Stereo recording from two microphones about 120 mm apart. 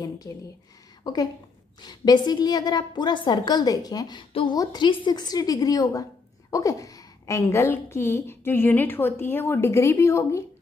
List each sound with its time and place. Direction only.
0.3 s a woman's voice: 25° left (ahead or behind)
4.3 s a woman's voice: 50° left (ahead or behind); by 10.4 s 25° left (ahead or behind)